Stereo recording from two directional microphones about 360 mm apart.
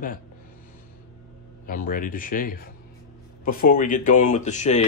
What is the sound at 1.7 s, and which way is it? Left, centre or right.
Speech, left.